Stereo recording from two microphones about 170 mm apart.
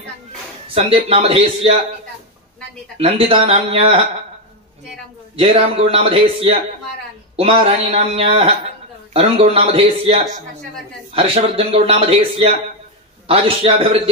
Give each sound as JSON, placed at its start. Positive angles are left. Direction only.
{"t": 0.7, "sound": "speech", "side_deg": -35}
{"t": 3.0, "sound": "speech", "side_deg": -35}
{"t": 5.3, "sound": "speech", "side_deg": -35}
{"t": 13.6, "sound": "speech", "side_deg": -35}